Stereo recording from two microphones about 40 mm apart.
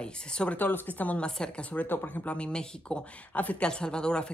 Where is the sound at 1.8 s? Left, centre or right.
Left.